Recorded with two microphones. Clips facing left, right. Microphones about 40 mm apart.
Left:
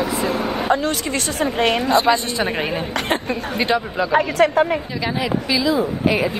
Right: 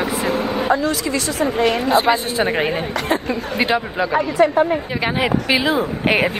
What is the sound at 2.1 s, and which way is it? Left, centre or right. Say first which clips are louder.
A woman's voice: right 2 dB; centre.